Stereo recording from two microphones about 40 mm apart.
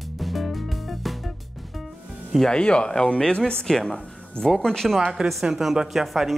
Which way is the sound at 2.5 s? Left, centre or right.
Left.